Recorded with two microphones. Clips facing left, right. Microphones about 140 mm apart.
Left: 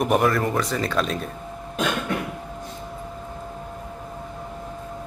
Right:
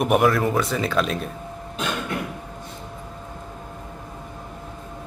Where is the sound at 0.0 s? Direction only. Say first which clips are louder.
Right 2 dB; centre (ahead or behind).